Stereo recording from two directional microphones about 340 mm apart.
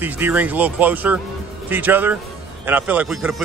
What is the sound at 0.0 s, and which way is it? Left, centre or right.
A man's voice, centre.